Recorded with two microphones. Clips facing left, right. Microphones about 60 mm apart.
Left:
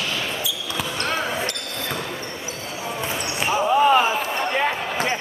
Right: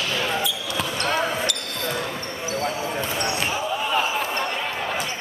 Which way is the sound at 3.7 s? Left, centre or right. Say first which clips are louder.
Left 11 dB; left.